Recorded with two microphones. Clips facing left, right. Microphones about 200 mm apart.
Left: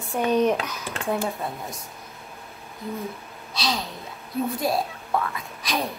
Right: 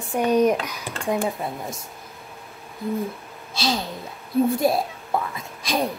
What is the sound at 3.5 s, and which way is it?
Speech, 25° right (ahead or behind).